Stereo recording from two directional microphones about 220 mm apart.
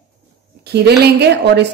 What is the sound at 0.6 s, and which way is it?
A woman's voice, 50° right (ahead or behind).